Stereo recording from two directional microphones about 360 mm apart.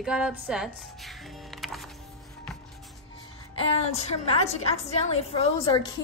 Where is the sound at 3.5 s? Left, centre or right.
Centre.